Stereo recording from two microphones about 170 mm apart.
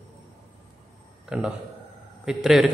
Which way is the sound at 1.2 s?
5° right (ahead or behind).